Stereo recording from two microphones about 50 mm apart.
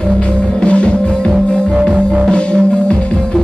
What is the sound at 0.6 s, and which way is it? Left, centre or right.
Music, left.